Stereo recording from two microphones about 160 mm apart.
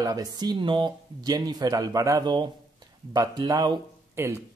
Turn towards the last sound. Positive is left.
turn(degrees=-15)  # may be behind; listen again after turning